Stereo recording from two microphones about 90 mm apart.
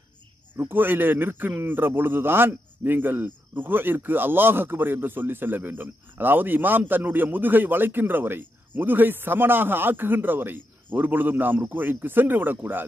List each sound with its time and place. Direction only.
0.6 s speech: 25° right (ahead or behind)